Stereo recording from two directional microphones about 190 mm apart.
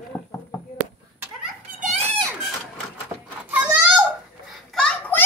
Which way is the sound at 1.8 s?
40° right (ahead or behind).